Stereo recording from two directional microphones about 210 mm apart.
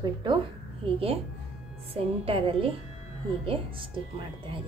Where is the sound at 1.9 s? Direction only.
25° right (ahead or behind).